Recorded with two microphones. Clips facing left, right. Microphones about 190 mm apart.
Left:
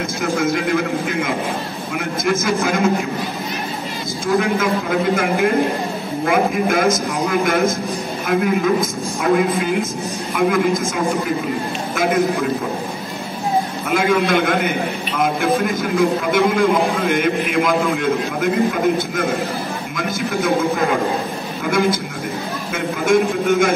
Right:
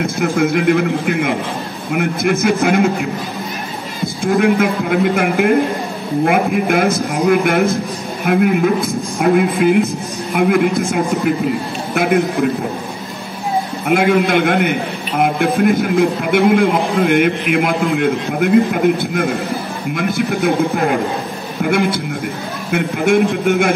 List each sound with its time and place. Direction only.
0.0 s a man's voice: 60° right (ahead or behind)
4.2 s a man's voice: 55° right (ahead or behind)
11.9 s a man's voice: 60° right (ahead or behind)
13.8 s a man's voice: 55° right (ahead or behind)